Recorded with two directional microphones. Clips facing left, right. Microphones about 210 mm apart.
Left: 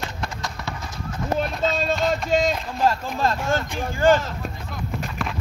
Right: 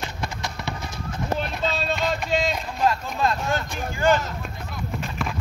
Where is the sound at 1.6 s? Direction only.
45° left (ahead or behind).